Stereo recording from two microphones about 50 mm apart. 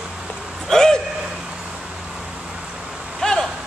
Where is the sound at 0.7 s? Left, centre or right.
Centre.